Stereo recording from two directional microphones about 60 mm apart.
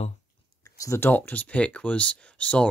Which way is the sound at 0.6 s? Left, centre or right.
Left.